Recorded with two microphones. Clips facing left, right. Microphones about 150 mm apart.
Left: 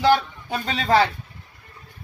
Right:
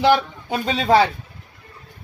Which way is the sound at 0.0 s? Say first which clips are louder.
Right 2 dB; 15° right (ahead or behind).